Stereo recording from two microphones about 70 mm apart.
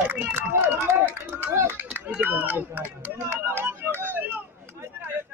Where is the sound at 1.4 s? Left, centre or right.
Right.